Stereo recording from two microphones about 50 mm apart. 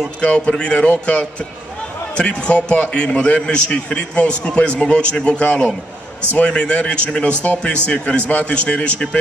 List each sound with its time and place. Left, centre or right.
0.2 s a man's voice: left